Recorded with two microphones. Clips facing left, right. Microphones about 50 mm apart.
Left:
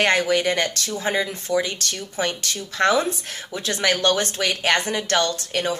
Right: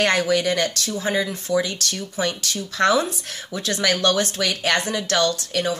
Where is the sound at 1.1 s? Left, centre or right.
Centre.